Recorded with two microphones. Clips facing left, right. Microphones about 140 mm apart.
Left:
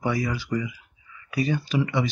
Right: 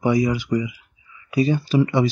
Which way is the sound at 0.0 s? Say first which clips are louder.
Right 7 dB; 20° right (ahead or behind).